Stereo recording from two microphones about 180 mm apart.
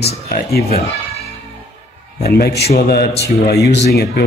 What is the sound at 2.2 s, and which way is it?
Speech, 60° left (ahead or behind).